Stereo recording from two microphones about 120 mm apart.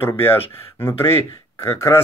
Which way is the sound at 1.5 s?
25° left (ahead or behind).